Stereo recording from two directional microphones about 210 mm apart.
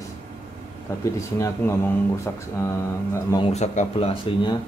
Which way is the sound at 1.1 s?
15° left (ahead or behind).